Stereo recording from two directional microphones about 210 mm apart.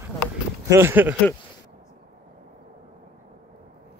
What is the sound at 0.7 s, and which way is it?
Speech, 10° right (ahead or behind).